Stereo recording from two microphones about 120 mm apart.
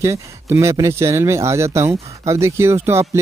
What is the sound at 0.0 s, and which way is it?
Speech, 25° right (ahead or behind).